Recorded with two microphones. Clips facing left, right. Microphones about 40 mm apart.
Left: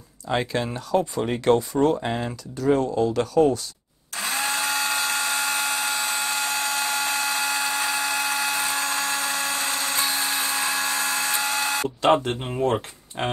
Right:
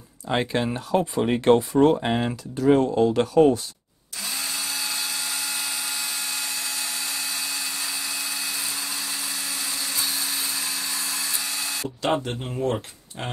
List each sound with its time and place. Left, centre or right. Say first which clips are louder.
0.3 s speech: right 1 dB; centre
4.2 s drill: left 6 dB; left
12.3 s speech: left 3 dB; left